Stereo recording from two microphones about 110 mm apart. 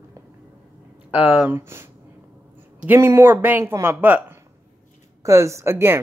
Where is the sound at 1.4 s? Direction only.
20° right (ahead or behind).